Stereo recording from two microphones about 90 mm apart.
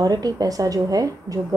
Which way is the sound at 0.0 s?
50° right (ahead or behind).